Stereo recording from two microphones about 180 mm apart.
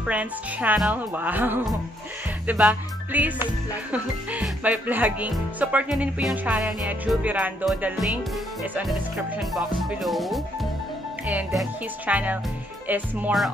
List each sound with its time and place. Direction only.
0.0 s speech: 5° right (ahead or behind)
2.4 s music: 5° right (ahead or behind)
3.9 s speech: 10° right (ahead or behind)
9.4 s speech: centre (ahead or behind)